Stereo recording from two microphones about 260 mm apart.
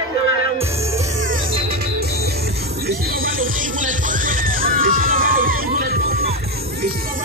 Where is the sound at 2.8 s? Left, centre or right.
Right.